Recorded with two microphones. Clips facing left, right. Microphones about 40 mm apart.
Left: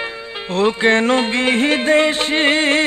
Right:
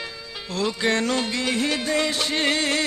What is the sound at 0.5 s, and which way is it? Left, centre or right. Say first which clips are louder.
Music: left 8 dB; left.